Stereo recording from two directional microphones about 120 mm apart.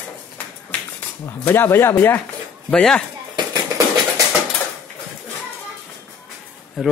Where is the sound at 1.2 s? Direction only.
20° left (ahead or behind).